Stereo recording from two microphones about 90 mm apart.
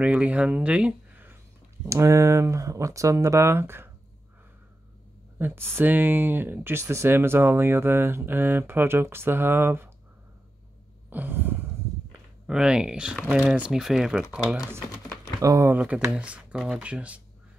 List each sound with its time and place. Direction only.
0.0 s speech: 15° right (ahead or behind)
1.9 s speech: 35° right (ahead or behind)
5.4 s speech: 25° right (ahead or behind)
11.1 s speech: 20° right (ahead or behind)
12.4 s speech: 10° right (ahead or behind)
15.4 s speech: 35° right (ahead or behind)
15.7 s speech: 15° right (ahead or behind)